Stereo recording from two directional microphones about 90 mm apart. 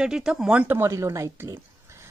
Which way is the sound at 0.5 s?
15° right (ahead or behind).